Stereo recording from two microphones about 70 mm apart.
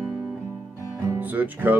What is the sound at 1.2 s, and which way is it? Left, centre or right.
Speech, right.